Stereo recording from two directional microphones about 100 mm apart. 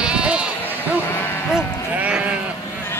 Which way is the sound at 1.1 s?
20° left (ahead or behind).